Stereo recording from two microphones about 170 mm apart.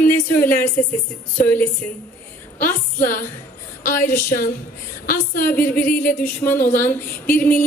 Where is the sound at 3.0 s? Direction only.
55° left (ahead or behind).